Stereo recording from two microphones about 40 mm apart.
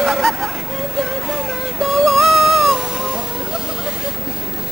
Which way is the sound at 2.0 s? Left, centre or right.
Centre.